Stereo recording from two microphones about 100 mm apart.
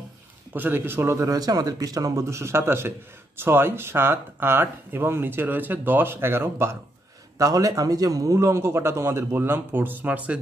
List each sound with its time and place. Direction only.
0.5 s speech: 20° right (ahead or behind)
7.3 s speech: 35° right (ahead or behind); by 10.4 s 15° right (ahead or behind)